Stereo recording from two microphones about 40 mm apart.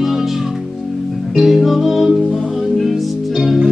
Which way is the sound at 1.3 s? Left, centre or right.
Centre.